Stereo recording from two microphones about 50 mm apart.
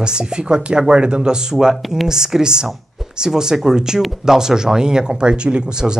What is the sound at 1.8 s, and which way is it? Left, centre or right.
Speech, centre.